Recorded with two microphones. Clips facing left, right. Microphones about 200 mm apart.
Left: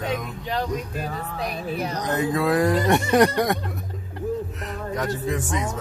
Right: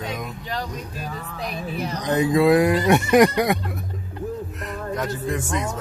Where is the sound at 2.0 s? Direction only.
15° right (ahead or behind).